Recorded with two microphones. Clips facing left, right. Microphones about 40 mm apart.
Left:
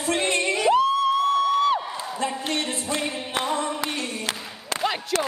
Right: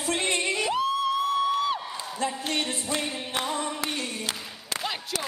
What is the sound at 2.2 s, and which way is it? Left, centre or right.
Music, left.